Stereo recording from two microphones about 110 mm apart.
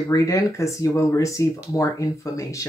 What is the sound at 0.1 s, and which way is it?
Speech, 30° left (ahead or behind).